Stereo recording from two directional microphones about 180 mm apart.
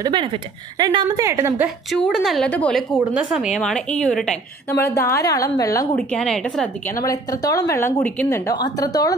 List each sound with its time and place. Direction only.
0.0 s a woman's voice: 25° right (ahead or behind)
1.9 s a woman's voice: centre (ahead or behind)
4.7 s a woman's voice: 15° left (ahead or behind)
6.0 s a woman's voice: 5° left (ahead or behind)
6.9 s a woman's voice: 20° left (ahead or behind)